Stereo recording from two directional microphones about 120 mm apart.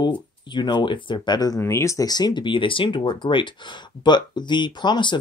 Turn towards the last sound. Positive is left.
turn(degrees=40)  # may be behind; listen again after turning